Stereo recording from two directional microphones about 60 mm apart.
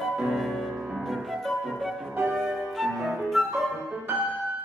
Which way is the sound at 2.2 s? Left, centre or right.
Centre.